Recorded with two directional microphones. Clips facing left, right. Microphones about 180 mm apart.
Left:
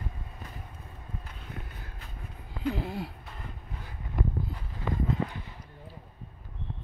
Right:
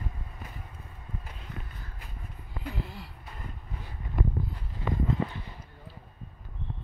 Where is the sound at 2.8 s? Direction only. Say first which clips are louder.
Left 9 dB; 55° left (ahead or behind).